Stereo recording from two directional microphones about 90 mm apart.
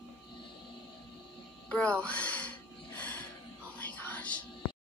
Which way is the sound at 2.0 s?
15° left (ahead or behind).